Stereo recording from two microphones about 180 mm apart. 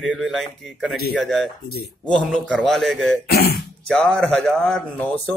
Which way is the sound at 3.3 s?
60° left (ahead or behind).